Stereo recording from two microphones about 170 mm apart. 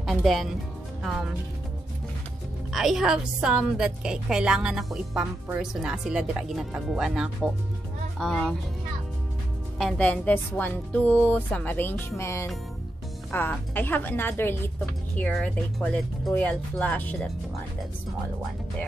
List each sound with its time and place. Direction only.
0.0 s speech: centre (ahead or behind)
2.7 s a woman's voice: centre (ahead or behind)
9.8 s speech: 5° left (ahead or behind)